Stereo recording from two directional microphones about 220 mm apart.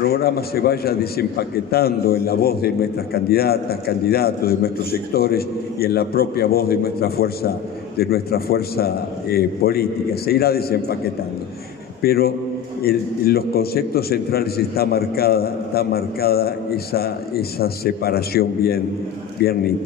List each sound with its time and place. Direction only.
0.0 s a man's voice: 45° left (ahead or behind)
12.0 s a man's voice: 45° left (ahead or behind)